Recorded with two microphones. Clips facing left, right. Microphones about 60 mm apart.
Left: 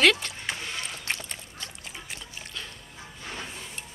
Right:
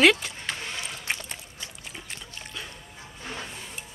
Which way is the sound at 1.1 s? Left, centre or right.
Centre.